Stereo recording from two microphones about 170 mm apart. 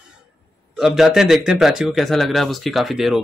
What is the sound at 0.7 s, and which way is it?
Speech, centre (ahead or behind).